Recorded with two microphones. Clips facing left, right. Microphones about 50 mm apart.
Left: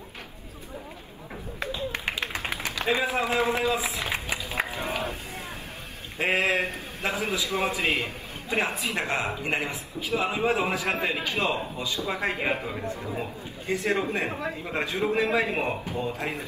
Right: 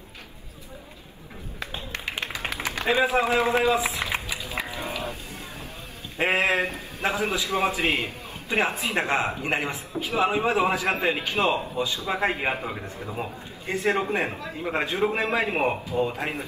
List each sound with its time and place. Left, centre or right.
2.6 s a man's voice: right
4.3 s a sound: left
6.1 s a man's voice: right